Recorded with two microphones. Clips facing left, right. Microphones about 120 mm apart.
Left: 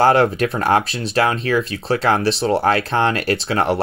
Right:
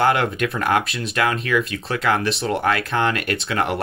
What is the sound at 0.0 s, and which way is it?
Speech, 35° left (ahead or behind).